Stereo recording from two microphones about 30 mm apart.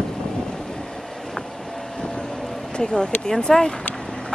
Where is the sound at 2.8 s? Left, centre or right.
Left.